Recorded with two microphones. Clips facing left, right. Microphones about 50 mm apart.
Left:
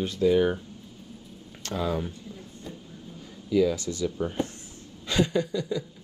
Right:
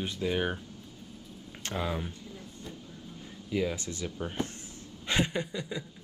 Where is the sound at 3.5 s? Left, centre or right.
Right.